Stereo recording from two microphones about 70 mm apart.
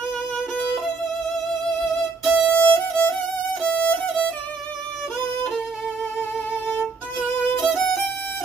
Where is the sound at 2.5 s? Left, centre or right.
Left.